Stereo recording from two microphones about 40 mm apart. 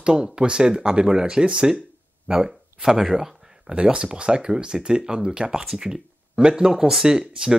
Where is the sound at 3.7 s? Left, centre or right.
Right.